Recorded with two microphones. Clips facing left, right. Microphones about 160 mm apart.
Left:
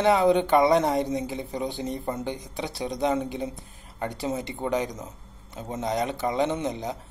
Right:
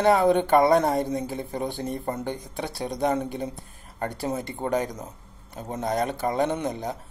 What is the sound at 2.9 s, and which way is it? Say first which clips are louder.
Speech: right 1 dB; 50° right (ahead or behind).